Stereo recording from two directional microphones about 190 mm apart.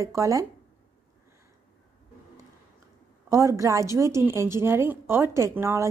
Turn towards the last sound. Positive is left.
turn(degrees=-15)  # may be behind; listen again after turning